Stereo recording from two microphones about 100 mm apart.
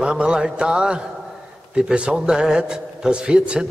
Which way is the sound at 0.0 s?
10° right (ahead or behind).